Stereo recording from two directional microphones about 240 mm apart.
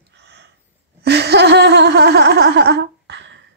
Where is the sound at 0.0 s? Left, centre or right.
Right.